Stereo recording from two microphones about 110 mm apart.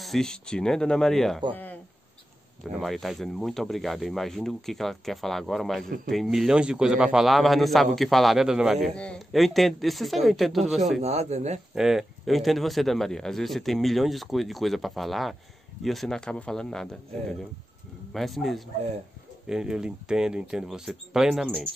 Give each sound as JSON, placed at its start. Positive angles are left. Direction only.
{"t": 0.0, "sound": "speech", "side_deg": 5}
{"t": 1.5, "sound": "a sound", "side_deg": 15}
{"t": 2.6, "sound": "speech", "side_deg": 0}
{"t": 11.0, "sound": "a man's voice", "side_deg": -75}
{"t": 11.7, "sound": "speech", "side_deg": -5}